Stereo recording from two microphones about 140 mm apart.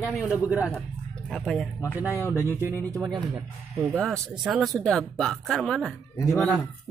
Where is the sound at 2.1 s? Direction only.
20° left (ahead or behind).